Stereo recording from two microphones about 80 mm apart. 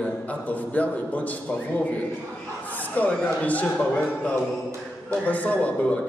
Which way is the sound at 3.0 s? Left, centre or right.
Centre.